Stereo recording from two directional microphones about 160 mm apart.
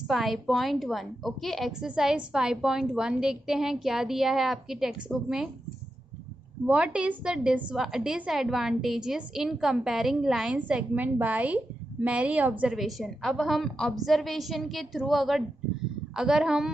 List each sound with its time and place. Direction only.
0.1 s a woman's voice: centre (ahead or behind)
6.6 s a woman's voice: 5° right (ahead or behind)